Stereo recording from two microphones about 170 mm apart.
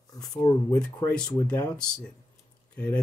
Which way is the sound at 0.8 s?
5° left (ahead or behind).